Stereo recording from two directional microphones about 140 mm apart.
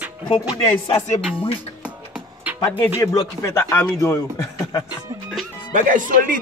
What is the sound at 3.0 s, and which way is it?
Speech, 20° left (ahead or behind).